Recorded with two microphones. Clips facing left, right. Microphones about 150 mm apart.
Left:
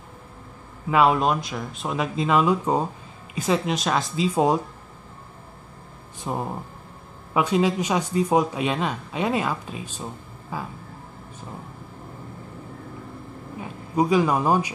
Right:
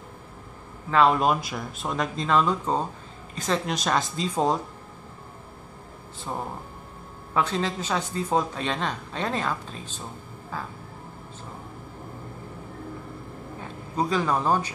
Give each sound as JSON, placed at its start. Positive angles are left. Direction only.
{"t": 0.8, "sound": "speech", "side_deg": 10}
{"t": 1.2, "sound": "speech", "side_deg": 0}
{"t": 6.3, "sound": "speech", "side_deg": 15}
{"t": 13.6, "sound": "a man's voice", "side_deg": 10}